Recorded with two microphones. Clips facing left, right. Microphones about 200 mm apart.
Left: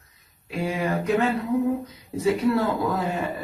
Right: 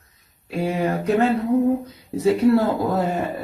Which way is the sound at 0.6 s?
40° right (ahead or behind).